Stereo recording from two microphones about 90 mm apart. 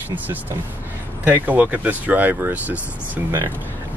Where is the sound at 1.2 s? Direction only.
20° right (ahead or behind).